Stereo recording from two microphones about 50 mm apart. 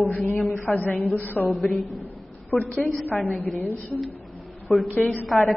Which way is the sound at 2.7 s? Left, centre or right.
Left.